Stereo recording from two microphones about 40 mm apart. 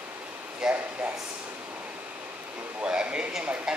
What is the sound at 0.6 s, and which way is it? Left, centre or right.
Speech, centre.